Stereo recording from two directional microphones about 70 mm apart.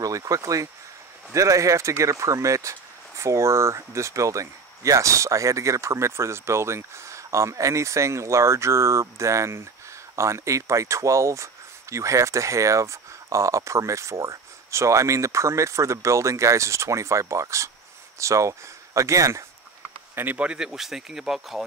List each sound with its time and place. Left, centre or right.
0.0 s speech: right
20.3 s speech: centre